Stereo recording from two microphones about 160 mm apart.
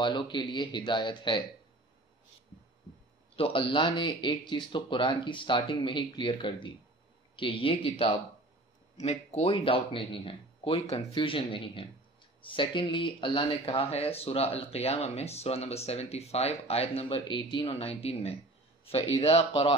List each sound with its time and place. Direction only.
0.0 s speech: 30° left (ahead or behind)
3.3 s speech: 35° left (ahead or behind)